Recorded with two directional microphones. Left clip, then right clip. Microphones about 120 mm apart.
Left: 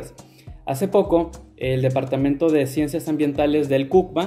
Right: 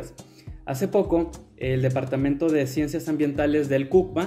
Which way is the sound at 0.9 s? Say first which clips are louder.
Left 4 dB; 15° left (ahead or behind).